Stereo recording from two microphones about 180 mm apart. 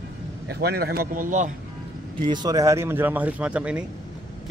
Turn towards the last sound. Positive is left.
turn(degrees=-5)  # may be behind; listen again after turning